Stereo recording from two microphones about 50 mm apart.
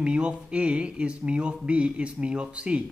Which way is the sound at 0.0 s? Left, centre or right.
Centre.